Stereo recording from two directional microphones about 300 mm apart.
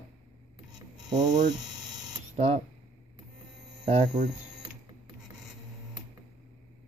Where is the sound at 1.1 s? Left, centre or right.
Centre.